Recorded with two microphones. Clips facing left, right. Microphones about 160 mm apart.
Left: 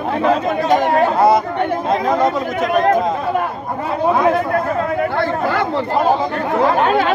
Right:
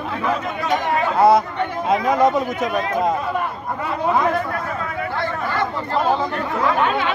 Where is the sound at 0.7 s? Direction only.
40° left (ahead or behind).